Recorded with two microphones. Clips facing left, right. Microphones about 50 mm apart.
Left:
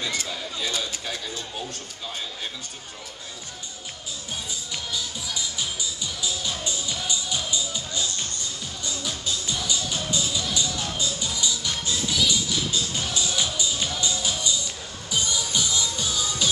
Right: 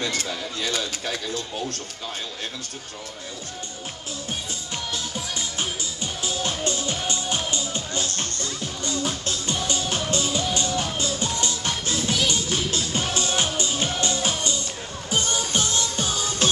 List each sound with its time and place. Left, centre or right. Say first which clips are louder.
0.2 s speech: right 2 dB; right
4.9 s music: even; right